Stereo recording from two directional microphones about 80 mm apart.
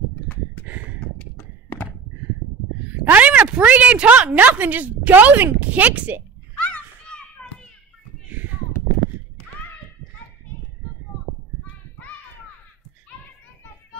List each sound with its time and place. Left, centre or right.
1.1 s a sound: centre
2.8 s a woman's voice: centre
6.6 s children playing: centre